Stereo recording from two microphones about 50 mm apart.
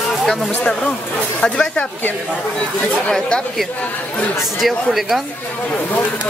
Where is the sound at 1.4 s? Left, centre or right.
Centre.